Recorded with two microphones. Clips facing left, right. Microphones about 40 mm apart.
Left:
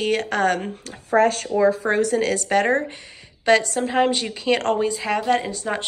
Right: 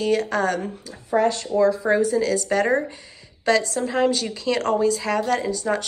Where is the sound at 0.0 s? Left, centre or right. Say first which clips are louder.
Even; left.